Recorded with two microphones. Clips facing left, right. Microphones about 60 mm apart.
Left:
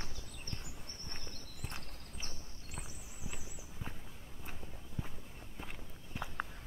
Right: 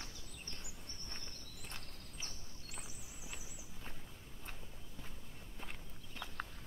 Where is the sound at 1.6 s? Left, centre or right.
Left.